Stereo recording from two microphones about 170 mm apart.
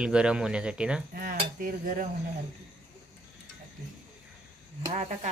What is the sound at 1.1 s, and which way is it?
Speech, 60° right (ahead or behind).